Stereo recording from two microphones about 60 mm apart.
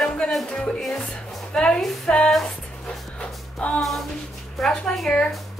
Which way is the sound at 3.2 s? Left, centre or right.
Centre.